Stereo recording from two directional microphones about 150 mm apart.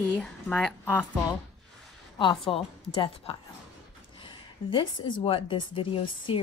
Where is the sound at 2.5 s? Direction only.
40° left (ahead or behind).